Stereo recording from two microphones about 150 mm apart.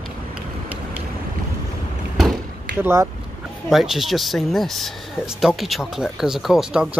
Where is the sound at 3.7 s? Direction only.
Centre (ahead or behind).